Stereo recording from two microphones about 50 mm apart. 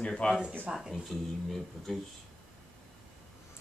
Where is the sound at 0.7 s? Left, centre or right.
Centre.